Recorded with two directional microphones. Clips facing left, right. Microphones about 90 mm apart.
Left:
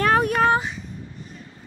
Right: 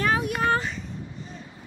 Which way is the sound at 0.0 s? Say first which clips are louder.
Left 6 dB; 55° left (ahead or behind).